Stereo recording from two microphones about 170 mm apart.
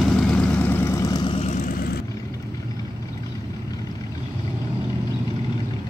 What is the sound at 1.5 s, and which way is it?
Vehicle, 50° left (ahead or behind).